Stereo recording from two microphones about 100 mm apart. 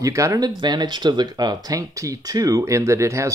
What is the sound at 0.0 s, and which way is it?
Speech, 30° right (ahead or behind).